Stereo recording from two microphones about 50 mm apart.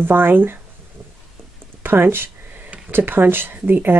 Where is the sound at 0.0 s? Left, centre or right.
Right.